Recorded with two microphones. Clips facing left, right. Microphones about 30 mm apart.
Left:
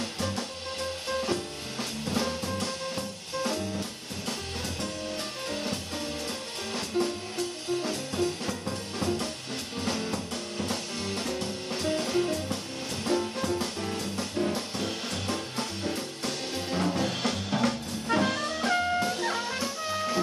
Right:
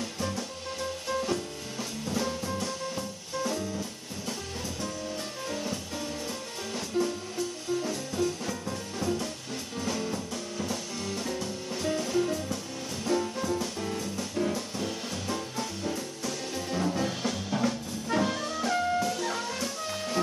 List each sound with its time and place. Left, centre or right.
1.0 s music: left
2.0 s music: left
5.5 s music: left
7.0 s music: left
11.2 s music: left
14.5 s music: left
18.1 s music: left
19.0 s music: left